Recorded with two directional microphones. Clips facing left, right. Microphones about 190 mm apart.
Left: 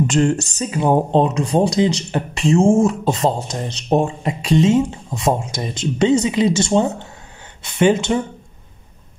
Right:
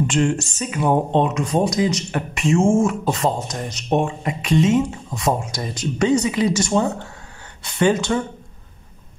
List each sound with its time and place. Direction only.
0.0 s speech: 40° left (ahead or behind); by 8.2 s 20° left (ahead or behind)